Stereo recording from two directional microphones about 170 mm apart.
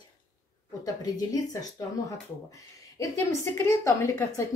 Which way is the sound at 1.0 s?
20° left (ahead or behind).